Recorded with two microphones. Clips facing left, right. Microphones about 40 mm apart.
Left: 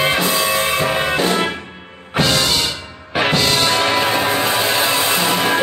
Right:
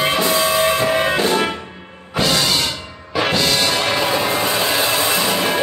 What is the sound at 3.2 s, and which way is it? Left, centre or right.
Music, left.